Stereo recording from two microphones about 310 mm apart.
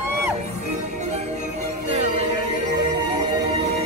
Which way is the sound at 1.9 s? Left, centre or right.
Right.